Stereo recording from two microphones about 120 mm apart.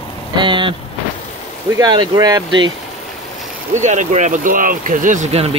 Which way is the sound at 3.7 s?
85° right.